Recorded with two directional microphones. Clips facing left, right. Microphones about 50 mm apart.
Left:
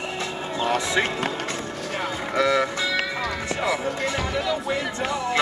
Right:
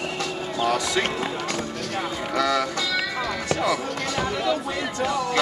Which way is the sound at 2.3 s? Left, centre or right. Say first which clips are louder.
Left 2 dB; left.